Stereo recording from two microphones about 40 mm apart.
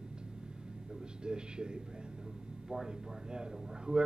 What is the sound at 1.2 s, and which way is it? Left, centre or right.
Speech, right.